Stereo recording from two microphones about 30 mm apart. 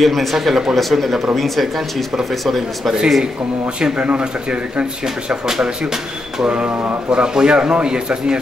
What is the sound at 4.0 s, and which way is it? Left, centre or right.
Speech, right.